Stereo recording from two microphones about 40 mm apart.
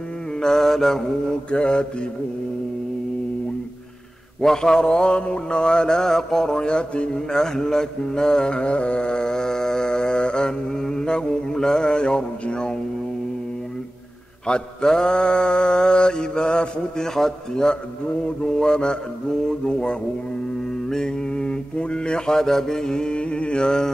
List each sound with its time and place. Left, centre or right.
0.4 s mantra: centre
1.5 s mantra: left
4.4 s mantra: centre
14.4 s mantra: left
22.3 s mantra: centre